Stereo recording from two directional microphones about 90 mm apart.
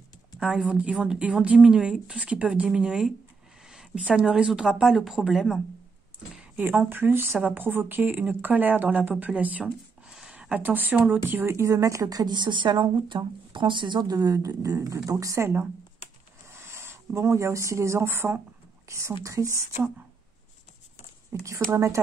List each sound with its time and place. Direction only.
0.4 s a woman's voice: 5° right (ahead or behind)
6.5 s a woman's voice: 20° right (ahead or behind)
16.5 s speech: 25° right (ahead or behind)
21.7 s speech: 35° right (ahead or behind)